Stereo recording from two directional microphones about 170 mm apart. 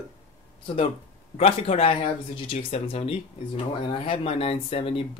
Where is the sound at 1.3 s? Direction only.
35° left (ahead or behind).